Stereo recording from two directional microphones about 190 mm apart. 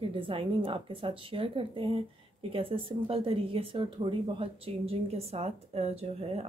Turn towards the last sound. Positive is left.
turn(degrees=-30)  # may be behind; listen again after turning